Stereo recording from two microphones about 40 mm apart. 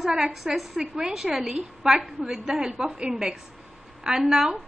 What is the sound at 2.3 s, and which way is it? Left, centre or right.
Speech, centre.